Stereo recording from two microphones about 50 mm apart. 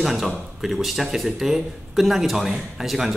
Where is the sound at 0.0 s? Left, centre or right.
Centre.